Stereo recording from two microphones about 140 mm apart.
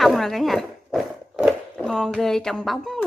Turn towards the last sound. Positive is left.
turn(degrees=0)  # may be behind; listen again after turning